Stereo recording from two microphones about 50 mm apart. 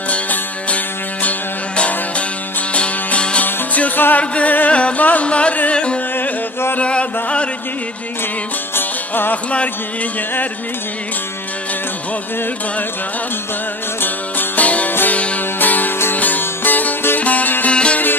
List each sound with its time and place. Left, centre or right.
0.1 s music: left
3.4 s music: left
4.2 s music: left
8.7 s music: left
14.0 s music: left
14.9 s music: left
15.1 s music: left
17.6 s music: left